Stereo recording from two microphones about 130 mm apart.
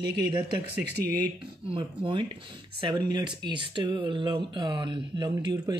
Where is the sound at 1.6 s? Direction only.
45° right (ahead or behind).